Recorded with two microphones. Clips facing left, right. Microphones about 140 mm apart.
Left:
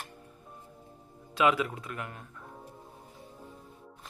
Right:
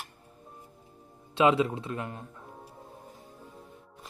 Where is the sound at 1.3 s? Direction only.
25° right (ahead or behind).